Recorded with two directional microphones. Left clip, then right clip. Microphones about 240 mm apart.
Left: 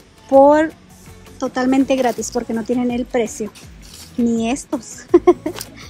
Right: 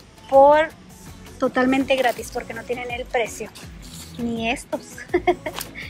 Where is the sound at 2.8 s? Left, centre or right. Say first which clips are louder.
Left 1 dB; left.